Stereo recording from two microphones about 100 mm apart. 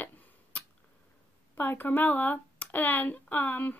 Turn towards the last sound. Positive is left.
turn(degrees=15)  # may be behind; listen again after turning